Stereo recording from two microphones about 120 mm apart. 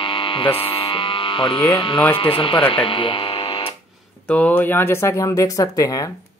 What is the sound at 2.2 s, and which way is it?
Speech, 45° left (ahead or behind).